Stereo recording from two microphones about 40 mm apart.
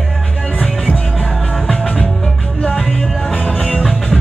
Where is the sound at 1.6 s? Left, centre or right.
Left.